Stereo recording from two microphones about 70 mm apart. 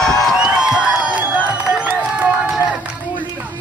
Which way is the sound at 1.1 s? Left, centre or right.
Right.